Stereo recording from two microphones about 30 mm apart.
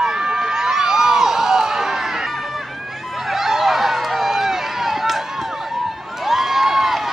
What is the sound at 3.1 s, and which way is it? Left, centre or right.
Run, centre.